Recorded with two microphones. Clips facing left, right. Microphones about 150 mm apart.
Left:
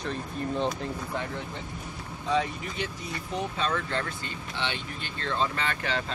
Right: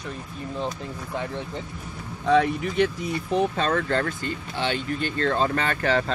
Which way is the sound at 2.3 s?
65° right (ahead or behind).